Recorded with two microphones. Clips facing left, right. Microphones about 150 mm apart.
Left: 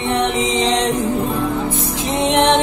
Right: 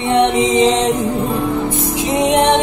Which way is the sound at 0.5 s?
10° right (ahead or behind).